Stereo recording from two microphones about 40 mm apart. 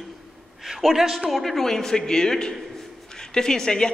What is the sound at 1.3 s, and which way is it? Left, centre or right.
A man's voice, centre.